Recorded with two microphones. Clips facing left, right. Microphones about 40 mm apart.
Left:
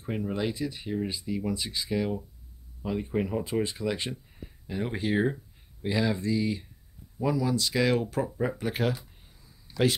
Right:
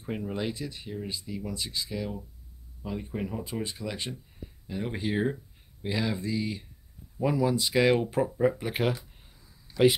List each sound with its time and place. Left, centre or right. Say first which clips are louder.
0.0 s speech: left 2 dB; centre
0.8 s speech: left 7 dB; centre
1.1 s speech: left 5 dB; centre
7.2 s speech: right 1 dB; centre
8.4 s speech: right 3 dB; centre